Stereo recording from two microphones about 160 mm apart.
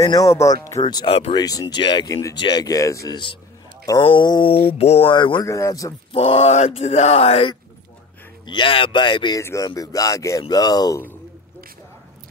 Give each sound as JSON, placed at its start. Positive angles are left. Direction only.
{"t": 0.0, "sound": "speech", "side_deg": 20}
{"t": 1.3, "sound": "speech", "side_deg": 25}
{"t": 4.0, "sound": "speech", "side_deg": 30}
{"t": 5.1, "sound": "speech", "side_deg": 30}
{"t": 6.1, "sound": "speech", "side_deg": 40}
{"t": 9.4, "sound": "speech", "side_deg": 15}